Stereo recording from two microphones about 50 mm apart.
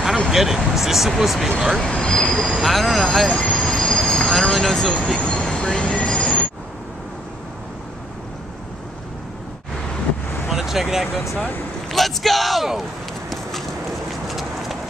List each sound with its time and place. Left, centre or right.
0.3 s speech: centre
1.8 s vehicle: centre
2.6 s speech: centre
3.3 s train wheels squealing: left
3.8 s train: left
4.3 s speech: centre
4.9 s train: centre
10.5 s vehicle: centre
11.3 s speech: left
11.9 s speech: centre
13.3 s a sound: centre